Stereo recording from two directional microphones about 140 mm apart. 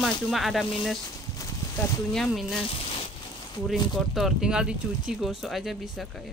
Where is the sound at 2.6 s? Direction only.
45° left (ahead or behind).